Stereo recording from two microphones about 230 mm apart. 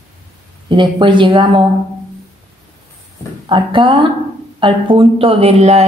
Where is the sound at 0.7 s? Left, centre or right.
Right.